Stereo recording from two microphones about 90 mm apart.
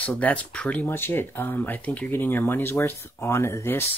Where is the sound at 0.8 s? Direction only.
25° left (ahead or behind).